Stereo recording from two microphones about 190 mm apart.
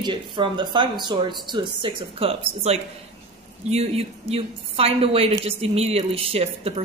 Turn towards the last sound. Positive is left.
turn(degrees=-30)  # may be behind; listen again after turning